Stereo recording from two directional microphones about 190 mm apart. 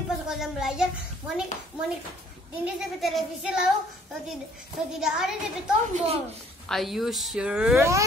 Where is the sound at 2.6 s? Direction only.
Centre (ahead or behind).